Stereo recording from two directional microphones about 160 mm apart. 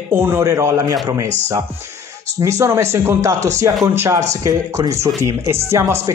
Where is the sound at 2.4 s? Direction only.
20° right (ahead or behind).